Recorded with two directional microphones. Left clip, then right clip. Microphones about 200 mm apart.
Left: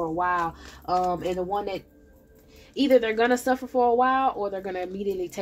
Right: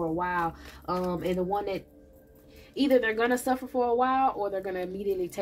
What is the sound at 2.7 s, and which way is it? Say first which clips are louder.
Speech: left 4 dB; 35° left (ahead or behind).